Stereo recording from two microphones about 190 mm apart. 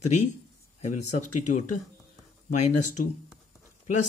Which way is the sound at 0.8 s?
40° left (ahead or behind).